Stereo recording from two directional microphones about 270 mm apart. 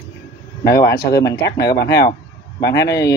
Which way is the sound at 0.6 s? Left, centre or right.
Left.